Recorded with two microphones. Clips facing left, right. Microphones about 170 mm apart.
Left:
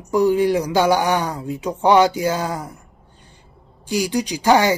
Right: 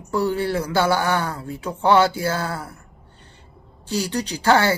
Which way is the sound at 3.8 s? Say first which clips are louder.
Left 4 dB; 10° left (ahead or behind).